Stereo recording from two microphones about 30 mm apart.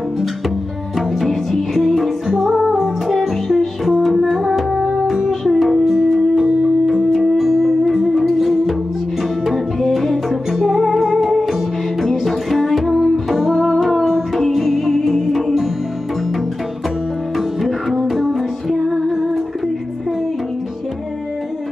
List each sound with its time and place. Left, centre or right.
0.9 s music: centre
2.2 s music: centre
7.1 s music: centre
9.9 s music: centre
13.8 s music: centre
17.4 s music: centre